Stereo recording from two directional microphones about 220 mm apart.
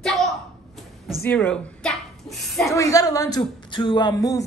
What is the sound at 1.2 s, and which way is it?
Speech, 5° left (ahead or behind).